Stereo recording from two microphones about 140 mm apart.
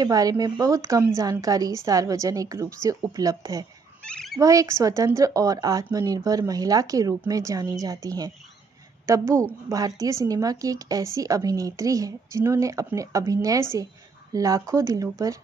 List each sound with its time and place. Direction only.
0.0 s a woman's voice: 25° right (ahead or behind)
4.0 s a sound: 5° left (ahead or behind)
4.4 s a woman's voice: 25° right (ahead or behind)